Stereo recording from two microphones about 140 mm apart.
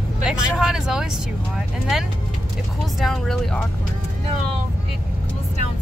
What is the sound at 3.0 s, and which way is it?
Speech, centre (ahead or behind).